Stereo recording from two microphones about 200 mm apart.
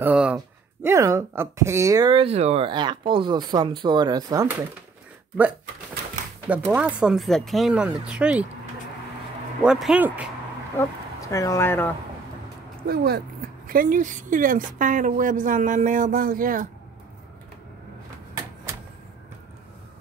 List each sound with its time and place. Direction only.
0.0 s a sound: 5° right (ahead or behind)
0.8 s speech: 15° right (ahead or behind)
6.4 s speech: 5° right (ahead or behind)
9.6 s speech: 5° right (ahead or behind)
10.8 s speech: 15° left (ahead or behind)
12.8 s a woman's voice: 50° right (ahead or behind)